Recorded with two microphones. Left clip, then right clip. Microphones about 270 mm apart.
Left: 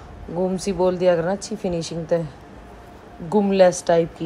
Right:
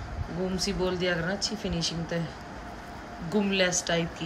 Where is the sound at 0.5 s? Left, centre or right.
Left.